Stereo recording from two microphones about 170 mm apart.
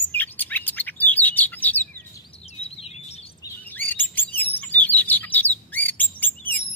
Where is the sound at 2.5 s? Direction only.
35° left (ahead or behind).